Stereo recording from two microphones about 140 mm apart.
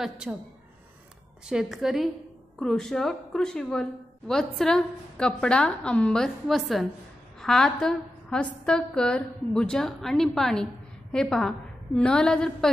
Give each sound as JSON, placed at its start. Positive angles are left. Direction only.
{"t": 0.0, "sound": "a woman's voice", "side_deg": -5}
{"t": 1.5, "sound": "a woman's voice", "side_deg": -5}